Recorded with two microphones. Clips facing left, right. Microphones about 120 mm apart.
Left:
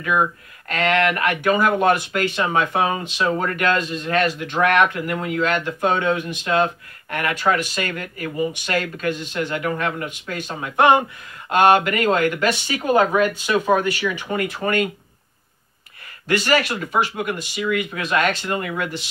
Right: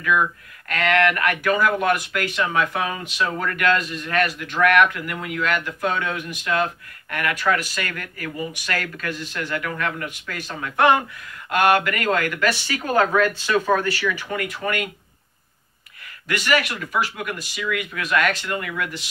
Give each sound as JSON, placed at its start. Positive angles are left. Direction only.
{"t": 0.0, "sound": "speech", "side_deg": 30}
{"t": 14.0, "sound": "speech", "side_deg": 30}
{"t": 16.3, "sound": "speech", "side_deg": 30}